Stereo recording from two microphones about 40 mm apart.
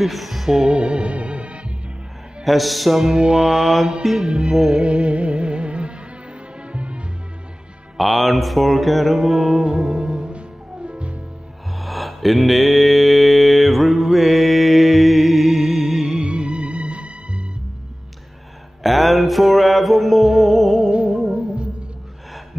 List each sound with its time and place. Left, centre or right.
0.0 s music: centre
0.5 s mantra: centre
0.7 s music: right
2.4 s mantra: centre
3.1 s mantra: right
4.2 s music: right
4.6 s mantra: centre
4.8 s music: right
8.0 s mantra: centre; by 10.3 s right
10.9 s music: right
11.8 s mantra: centre
16.3 s music: right
18.8 s mantra: centre
21.1 s music: centre